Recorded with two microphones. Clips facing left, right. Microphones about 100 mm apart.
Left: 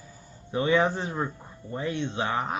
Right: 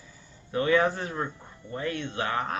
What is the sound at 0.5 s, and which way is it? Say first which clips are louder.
Speech: even; 20° left (ahead or behind).